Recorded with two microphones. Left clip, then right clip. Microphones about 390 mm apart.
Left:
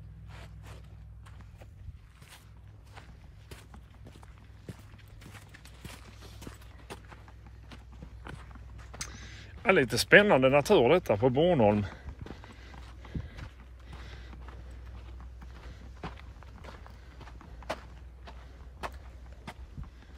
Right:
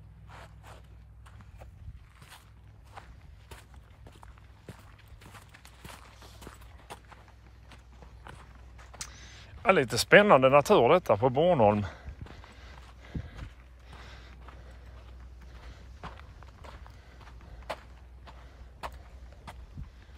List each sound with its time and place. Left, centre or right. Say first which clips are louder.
0.3 s a sound: right 2 dB; centre
2.9 s walk: right 4 dB; centre
4.7 s a sound: left 1 dB; centre
5.5 s walk: even; centre
6.1 s walk: even; centre
8.9 s speech: left 2 dB; centre
12.4 s clip-clop: left 1 dB; centre
13.8 s a sound: even; centre
16.0 s walk: left 1 dB; centre
19.5 s vehicle: left 1 dB; centre